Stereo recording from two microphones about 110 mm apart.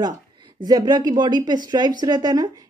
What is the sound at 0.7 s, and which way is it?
Speech, 35° right (ahead or behind).